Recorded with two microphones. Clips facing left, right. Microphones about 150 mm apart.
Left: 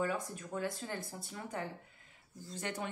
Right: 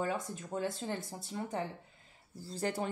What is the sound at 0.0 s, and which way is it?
A woman's voice, 25° right (ahead or behind).